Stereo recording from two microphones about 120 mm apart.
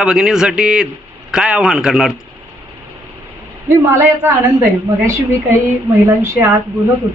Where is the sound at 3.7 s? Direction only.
20° right (ahead or behind).